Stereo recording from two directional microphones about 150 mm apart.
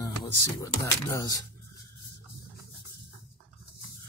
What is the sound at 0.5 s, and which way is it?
Speech, 20° left (ahead or behind).